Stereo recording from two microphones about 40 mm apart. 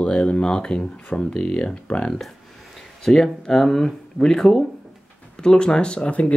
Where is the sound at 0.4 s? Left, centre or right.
Left.